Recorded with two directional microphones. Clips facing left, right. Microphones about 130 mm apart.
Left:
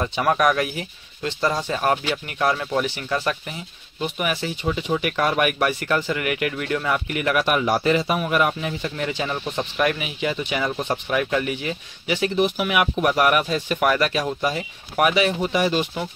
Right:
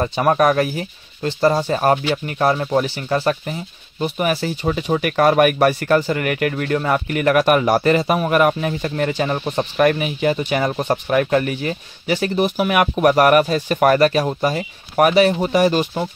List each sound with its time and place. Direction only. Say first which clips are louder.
0.0 s speech: right 4 dB; 35° right (ahead or behind)